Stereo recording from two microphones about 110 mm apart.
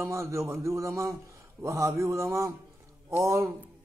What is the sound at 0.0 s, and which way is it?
Speech, 25° right (ahead or behind).